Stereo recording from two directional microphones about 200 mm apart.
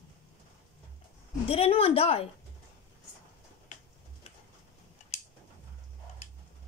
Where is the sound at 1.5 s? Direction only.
30° left (ahead or behind).